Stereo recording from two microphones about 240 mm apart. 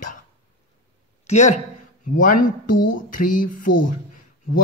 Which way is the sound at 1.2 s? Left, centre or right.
Left.